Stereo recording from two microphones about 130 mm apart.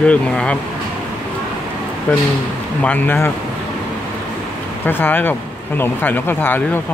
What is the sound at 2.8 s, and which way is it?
Speech, 15° left (ahead or behind).